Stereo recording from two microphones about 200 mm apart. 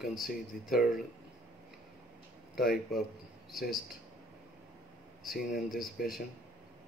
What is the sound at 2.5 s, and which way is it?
Speech, 50° left (ahead or behind).